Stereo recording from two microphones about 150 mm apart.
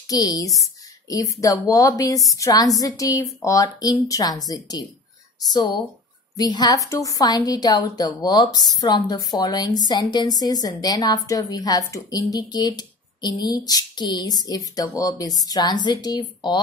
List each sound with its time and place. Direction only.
0.1 s a woman's voice: 25° left (ahead or behind)